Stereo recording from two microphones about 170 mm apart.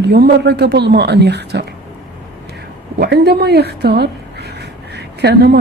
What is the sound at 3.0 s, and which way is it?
A woman's voice, 70° right (ahead or behind).